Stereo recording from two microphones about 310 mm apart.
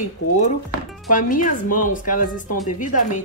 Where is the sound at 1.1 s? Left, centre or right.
Left.